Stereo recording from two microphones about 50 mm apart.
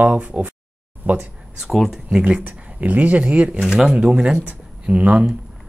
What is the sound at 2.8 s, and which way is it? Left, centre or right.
Speech, right.